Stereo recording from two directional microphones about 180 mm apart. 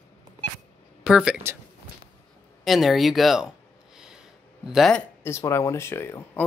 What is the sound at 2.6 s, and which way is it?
Speech, centre (ahead or behind).